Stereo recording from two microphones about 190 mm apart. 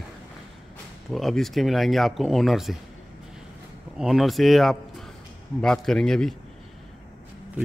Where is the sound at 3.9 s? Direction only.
Centre (ahead or behind).